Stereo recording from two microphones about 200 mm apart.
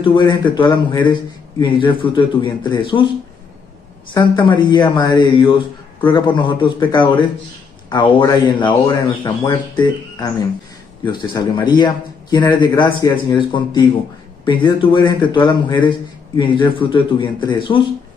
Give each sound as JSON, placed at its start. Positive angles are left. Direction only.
{"t": 0.0, "sound": "a man's voice", "side_deg": 25}
{"t": 4.1, "sound": "a man's voice", "side_deg": 20}